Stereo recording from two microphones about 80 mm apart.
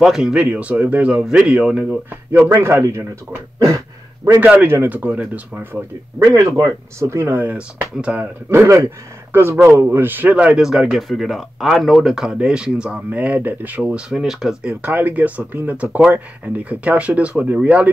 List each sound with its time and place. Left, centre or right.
0.0 s speech: centre
2.3 s speech: right
3.5 s throat clearing: right
4.6 s speech: right
6.1 s speech: right
7.5 s speech: centre
8.6 s speech: right
10.3 s speech: centre
14.9 s speech: right